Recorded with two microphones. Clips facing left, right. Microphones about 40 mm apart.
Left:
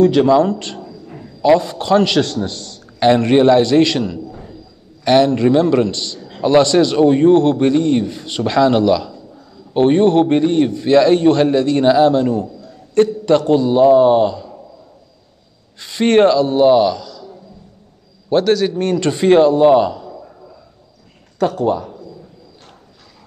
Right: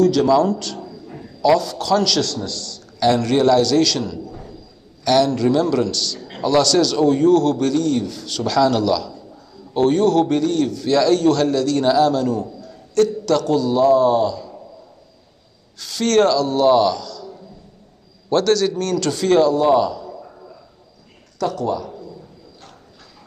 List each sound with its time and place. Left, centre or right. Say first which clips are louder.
0.0 s a man's voice: left 3 dB; left
15.8 s a man's voice: left 4 dB; left
21.4 s a man's voice: left 5 dB; left